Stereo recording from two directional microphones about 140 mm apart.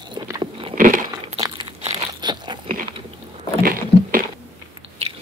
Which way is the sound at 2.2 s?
30° right (ahead or behind).